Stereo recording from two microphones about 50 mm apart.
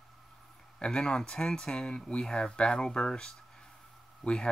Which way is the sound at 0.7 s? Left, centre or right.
Centre.